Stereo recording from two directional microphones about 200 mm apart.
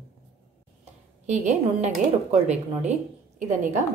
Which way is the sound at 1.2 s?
35° right (ahead or behind).